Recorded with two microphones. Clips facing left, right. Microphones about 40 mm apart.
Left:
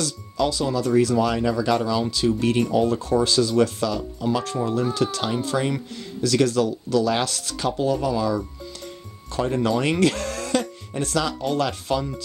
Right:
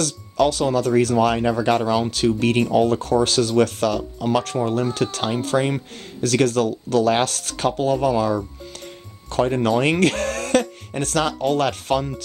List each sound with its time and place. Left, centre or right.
0.0 s speech: right
9.5 s speech: right